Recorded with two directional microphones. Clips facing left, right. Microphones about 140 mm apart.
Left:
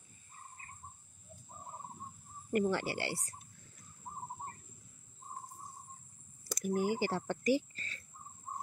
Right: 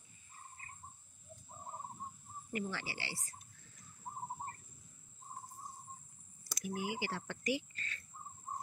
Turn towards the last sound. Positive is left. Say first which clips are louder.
# left 6 dB
turn(degrees=35)  # may be behind; listen again after turning